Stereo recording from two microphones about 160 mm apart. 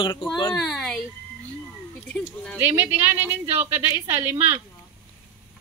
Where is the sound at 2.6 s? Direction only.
10° right (ahead or behind).